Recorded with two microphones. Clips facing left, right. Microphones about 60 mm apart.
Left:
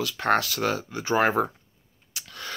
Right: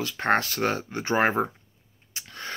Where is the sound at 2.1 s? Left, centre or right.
Right.